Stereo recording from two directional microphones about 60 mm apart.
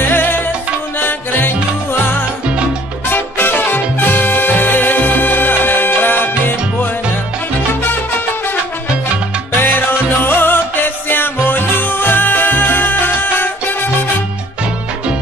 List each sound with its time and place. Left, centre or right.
0.1 s music: left
3.1 s music: left
9.6 s music: left